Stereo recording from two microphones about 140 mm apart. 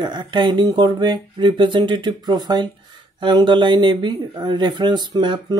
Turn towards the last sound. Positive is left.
turn(degrees=-30)  # may be behind; listen again after turning